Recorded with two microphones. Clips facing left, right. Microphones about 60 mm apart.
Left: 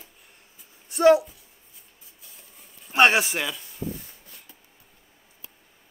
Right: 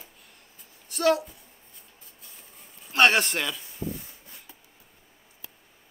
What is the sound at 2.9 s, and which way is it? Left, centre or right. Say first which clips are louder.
Speech: left 2 dB; centre.